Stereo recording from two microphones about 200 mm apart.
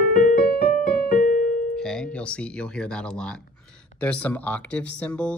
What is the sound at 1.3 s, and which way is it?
Piano, 45° left (ahead or behind).